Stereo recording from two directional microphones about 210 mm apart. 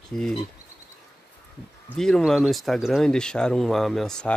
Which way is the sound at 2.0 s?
Centre (ahead or behind).